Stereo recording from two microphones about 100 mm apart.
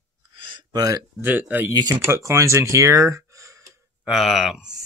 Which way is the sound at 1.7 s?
40° right (ahead or behind).